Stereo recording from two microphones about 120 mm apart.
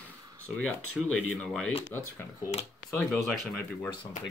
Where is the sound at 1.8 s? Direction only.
20° left (ahead or behind).